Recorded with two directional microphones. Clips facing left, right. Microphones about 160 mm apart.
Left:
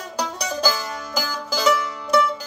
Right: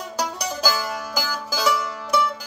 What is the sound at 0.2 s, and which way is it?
Music, 10° right (ahead or behind).